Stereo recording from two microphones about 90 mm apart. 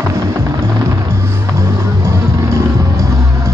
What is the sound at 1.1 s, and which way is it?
Music, 30° right (ahead or behind).